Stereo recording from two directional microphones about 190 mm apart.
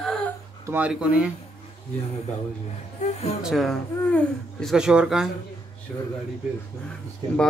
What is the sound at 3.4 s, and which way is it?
Speech, centre (ahead or behind).